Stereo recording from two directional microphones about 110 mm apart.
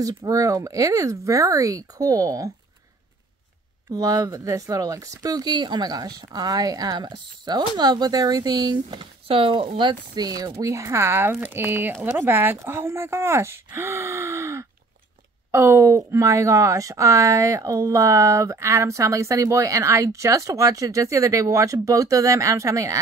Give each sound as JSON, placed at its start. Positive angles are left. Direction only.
{"t": 0.2, "sound": "speech", "side_deg": -30}
{"t": 3.9, "sound": "speech", "side_deg": -35}
{"t": 9.3, "sound": "speech", "side_deg": -55}